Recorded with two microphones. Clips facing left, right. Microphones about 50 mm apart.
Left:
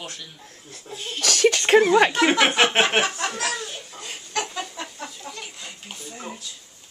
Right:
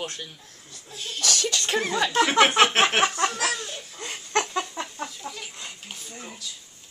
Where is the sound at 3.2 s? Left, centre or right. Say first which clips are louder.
Right 1 dB; centre.